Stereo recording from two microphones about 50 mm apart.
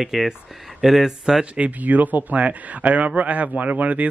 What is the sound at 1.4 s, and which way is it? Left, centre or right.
Speech, right.